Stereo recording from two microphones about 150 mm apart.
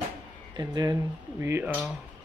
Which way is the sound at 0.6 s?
30° right (ahead or behind).